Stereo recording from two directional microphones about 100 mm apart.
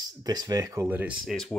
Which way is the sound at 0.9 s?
15° right (ahead or behind).